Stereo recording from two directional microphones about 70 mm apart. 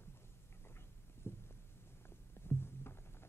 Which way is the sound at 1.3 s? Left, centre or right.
Left.